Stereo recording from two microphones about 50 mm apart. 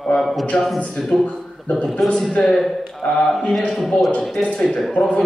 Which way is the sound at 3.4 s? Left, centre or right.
Centre.